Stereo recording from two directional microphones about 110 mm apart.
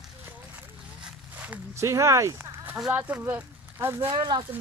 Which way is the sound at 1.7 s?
25° right (ahead or behind).